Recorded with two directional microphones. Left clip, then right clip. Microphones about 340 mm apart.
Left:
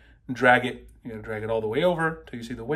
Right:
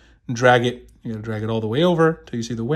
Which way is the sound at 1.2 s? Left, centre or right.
Centre.